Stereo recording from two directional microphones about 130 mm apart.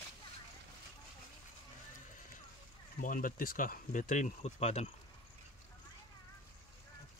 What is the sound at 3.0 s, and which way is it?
Speech, 90° left.